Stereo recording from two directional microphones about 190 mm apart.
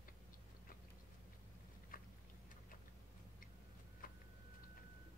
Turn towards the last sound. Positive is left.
turn(degrees=50)  # may be behind; listen again after turning